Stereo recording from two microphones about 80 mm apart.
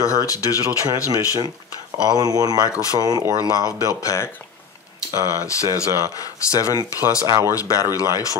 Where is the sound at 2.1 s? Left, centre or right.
Right.